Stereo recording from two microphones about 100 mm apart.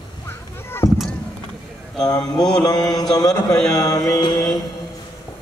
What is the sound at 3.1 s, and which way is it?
Mantra, 35° left (ahead or behind).